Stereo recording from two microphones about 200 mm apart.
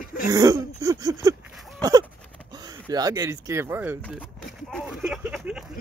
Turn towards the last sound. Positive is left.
turn(degrees=0)  # may be behind; listen again after turning